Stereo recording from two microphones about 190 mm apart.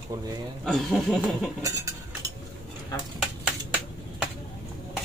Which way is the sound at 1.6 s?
15° right (ahead or behind).